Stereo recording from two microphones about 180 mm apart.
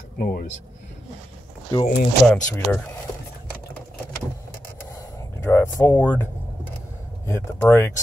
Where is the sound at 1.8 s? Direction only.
45° left (ahead or behind).